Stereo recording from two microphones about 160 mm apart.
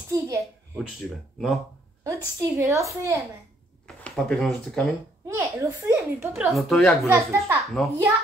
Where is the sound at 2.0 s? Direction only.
15° right (ahead or behind).